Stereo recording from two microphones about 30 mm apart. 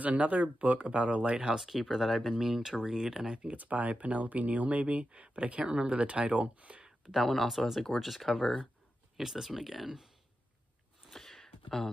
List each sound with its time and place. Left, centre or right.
0.0 s speech: right
1.3 s speech: right
1.6 s speech: centre
3.5 s speech: right
7.2 s speech: centre
9.1 s speech: centre
11.1 s a sound: centre